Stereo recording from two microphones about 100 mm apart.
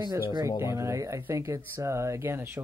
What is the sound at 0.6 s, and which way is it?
Speech, 30° right (ahead or behind).